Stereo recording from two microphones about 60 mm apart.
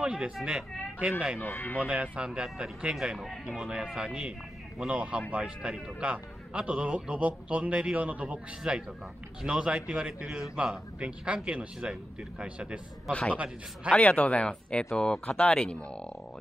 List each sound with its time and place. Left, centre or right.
0.0 s a man's voice: centre
1.4 s speech: left
1.8 s a man's voice: right
3.2 s a man's voice: centre; by 13.9 s right
13.9 s speech: left